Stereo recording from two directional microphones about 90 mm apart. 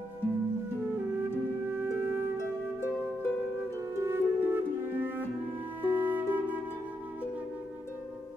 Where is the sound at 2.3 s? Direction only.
30° left (ahead or behind).